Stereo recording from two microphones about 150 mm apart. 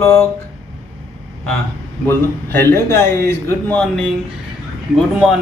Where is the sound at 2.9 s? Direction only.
15° left (ahead or behind).